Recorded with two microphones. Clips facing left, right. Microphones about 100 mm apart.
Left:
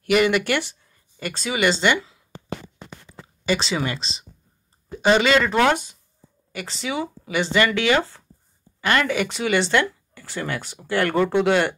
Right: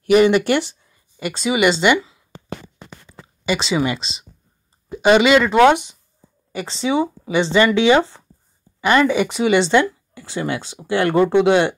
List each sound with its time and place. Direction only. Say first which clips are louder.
0.0 s speech: right 6 dB; 25° right (ahead or behind)
3.4 s speech: right 4 dB; 10° right (ahead or behind)